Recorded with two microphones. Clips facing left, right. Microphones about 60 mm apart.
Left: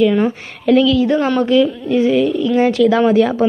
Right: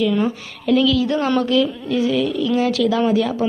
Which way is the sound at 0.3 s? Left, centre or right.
Left.